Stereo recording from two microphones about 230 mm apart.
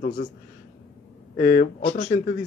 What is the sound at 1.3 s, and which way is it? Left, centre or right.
A man's voice, left.